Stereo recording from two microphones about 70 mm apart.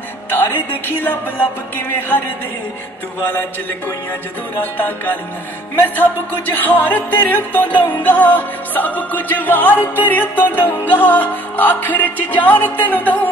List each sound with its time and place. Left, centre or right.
0.3 s a woman's voice: left
4.6 s music: left
6.5 s music: left